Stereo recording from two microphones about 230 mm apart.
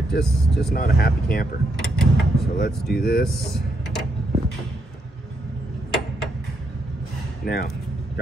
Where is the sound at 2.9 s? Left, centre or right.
Left.